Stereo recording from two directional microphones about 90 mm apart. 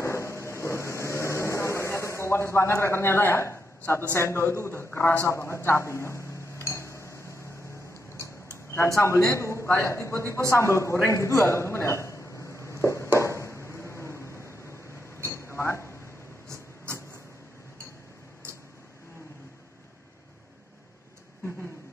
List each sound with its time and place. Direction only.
0.0 s vehicle: 30° left (ahead or behind)
4.1 s a man's voice: 30° left (ahead or behind)
8.6 s a man's voice: 30° left (ahead or behind)
10.5 s a sound: 30° left (ahead or behind)
15.2 s chink: 30° left (ahead or behind)
16.4 s vehicle: 30° right (ahead or behind)